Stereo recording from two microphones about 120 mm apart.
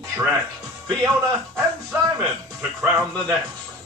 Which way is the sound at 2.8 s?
20° right (ahead or behind).